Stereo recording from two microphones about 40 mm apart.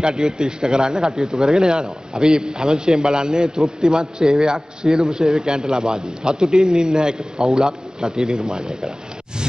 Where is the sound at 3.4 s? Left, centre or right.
Centre.